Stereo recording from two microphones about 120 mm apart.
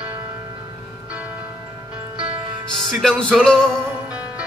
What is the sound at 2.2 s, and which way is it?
Music, 5° right (ahead or behind).